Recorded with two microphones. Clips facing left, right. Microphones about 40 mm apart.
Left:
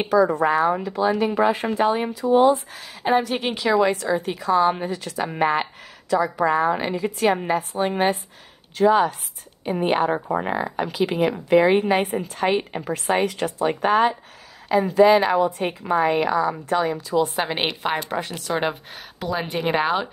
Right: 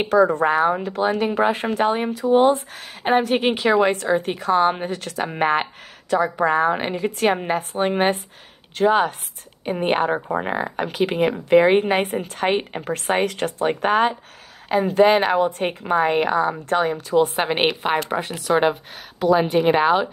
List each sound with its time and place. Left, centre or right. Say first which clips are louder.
0.1 s a woman's voice: right 1 dB; right
12.9 s a woman's voice: right 1 dB; right
17.5 s a woman's voice: right 4 dB; centre